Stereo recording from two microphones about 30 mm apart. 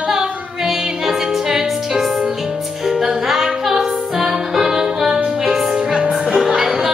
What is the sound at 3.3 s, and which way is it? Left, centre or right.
Music, centre.